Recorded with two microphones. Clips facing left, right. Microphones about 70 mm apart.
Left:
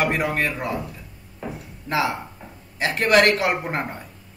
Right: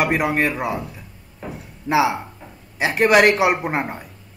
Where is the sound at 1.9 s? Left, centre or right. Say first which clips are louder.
Right 5 dB; centre.